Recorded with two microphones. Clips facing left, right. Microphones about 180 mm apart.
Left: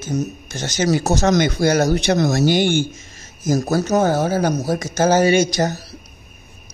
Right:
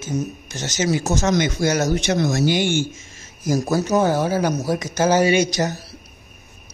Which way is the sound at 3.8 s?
40° left (ahead or behind).